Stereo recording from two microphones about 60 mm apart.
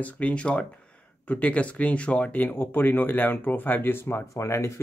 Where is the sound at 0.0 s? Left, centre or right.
Left.